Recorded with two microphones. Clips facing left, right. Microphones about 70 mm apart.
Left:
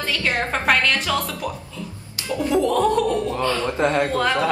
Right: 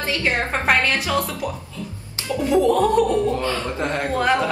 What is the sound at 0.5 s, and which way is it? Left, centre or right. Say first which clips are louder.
Speech: left 1 dB; centre.